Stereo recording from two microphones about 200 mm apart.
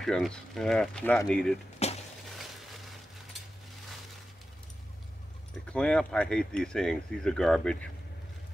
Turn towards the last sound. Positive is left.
turn(degrees=5)  # may be behind; listen again after turning